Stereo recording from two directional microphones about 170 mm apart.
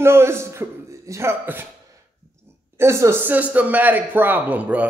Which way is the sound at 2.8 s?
15° right (ahead or behind).